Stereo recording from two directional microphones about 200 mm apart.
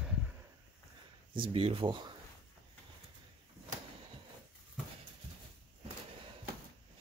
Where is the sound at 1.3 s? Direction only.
25° right (ahead or behind).